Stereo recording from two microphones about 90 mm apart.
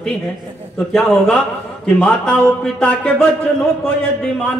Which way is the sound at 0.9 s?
5° left (ahead or behind).